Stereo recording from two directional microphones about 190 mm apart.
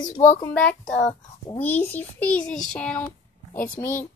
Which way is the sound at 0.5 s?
5° left (ahead or behind).